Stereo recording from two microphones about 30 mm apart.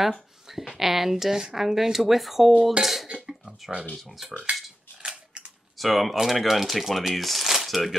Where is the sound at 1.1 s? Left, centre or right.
Centre.